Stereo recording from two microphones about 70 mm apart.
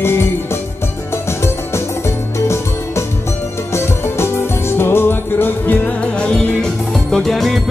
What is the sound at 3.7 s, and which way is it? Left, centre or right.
Music, left.